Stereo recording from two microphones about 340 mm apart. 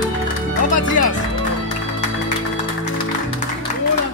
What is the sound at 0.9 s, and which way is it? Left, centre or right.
Music, left.